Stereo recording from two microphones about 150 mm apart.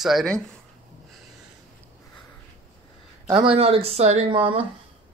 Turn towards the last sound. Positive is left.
turn(degrees=-35)  # may be behind; listen again after turning